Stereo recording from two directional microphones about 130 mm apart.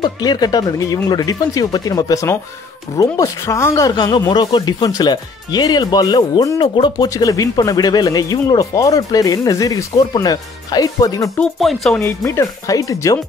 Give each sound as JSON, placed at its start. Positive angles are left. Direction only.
{"t": 0.0, "sound": "speech", "side_deg": 30}
{"t": 7.1, "sound": "speech", "side_deg": 25}
{"t": 11.3, "sound": "speech", "side_deg": 5}
{"t": 12.0, "sound": "speech", "side_deg": 20}